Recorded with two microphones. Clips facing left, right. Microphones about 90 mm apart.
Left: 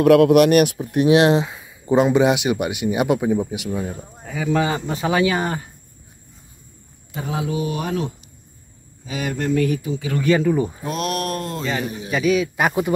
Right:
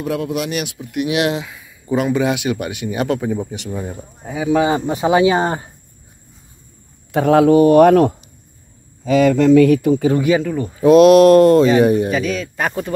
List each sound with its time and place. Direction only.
0.0 s speech: 70° left (ahead or behind); by 3.8 s 5° left (ahead or behind)
4.2 s speech: 15° right (ahead or behind)
7.1 s speech: 65° right (ahead or behind)
9.0 s speech: 90° right; by 10.0 s 60° right (ahead or behind)
10.1 s speech: 10° right (ahead or behind)
10.4 s speech: 10° left (ahead or behind)
10.8 s speech: 90° right
11.8 s speech: 65° right (ahead or behind)
12.1 s speech: 5° left (ahead or behind)